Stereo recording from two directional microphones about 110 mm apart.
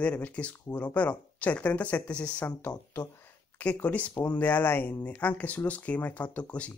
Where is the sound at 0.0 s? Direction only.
15° left (ahead or behind).